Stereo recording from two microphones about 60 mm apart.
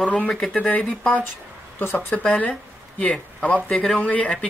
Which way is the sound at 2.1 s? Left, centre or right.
Left.